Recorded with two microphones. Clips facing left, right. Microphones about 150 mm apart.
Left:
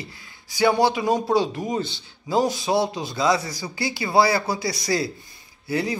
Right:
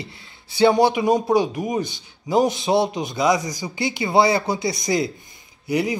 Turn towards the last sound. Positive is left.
turn(degrees=-20)  # may be behind; listen again after turning